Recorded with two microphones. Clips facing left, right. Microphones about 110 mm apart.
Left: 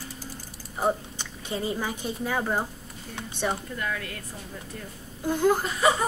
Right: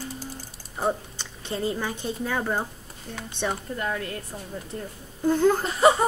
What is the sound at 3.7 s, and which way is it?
Speech, 35° right (ahead or behind).